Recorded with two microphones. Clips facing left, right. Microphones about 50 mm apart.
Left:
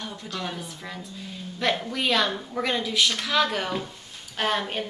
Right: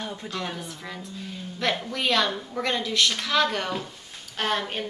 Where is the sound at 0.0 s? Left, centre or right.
Right.